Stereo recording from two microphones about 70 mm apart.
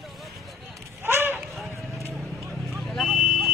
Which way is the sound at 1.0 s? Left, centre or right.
Right.